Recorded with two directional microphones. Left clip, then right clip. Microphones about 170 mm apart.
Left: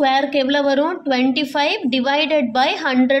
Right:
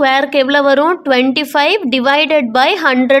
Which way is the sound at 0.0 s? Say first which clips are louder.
Right 5 dB; 45° right (ahead or behind).